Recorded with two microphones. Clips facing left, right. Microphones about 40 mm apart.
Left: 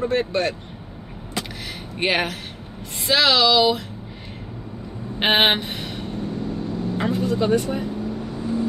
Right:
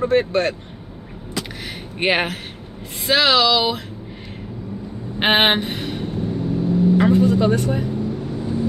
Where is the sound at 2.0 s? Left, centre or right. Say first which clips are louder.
Right 2 dB; centre.